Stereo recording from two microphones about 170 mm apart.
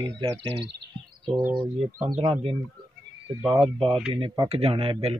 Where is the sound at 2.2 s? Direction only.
30° right (ahead or behind).